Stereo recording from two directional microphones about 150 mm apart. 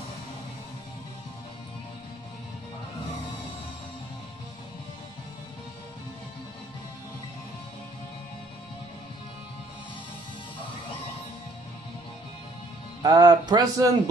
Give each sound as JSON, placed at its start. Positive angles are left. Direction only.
{"t": 13.0, "sound": "speech", "side_deg": -25}